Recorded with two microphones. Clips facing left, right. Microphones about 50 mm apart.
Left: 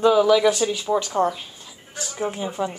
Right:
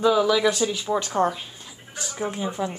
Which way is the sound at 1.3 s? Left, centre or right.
Centre.